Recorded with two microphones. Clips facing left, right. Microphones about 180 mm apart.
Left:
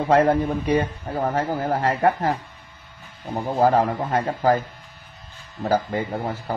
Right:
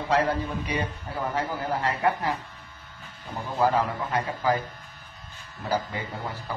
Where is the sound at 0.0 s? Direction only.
50° left (ahead or behind).